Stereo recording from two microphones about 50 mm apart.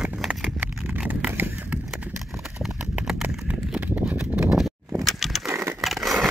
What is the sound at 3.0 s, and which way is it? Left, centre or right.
Clip-clop, centre.